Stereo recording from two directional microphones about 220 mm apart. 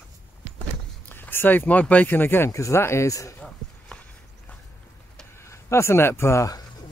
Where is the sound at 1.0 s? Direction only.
10° left (ahead or behind).